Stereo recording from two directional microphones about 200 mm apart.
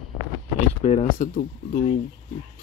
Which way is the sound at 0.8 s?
35° left (ahead or behind).